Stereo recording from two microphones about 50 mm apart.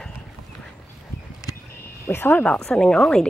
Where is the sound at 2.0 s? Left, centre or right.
Left.